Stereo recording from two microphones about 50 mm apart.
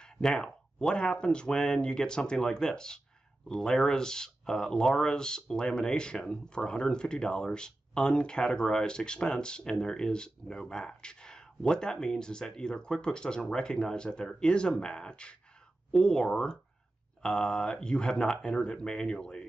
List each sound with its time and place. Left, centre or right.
0.0 s speech: centre